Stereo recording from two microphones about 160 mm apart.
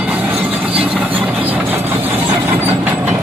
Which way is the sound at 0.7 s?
10° right (ahead or behind).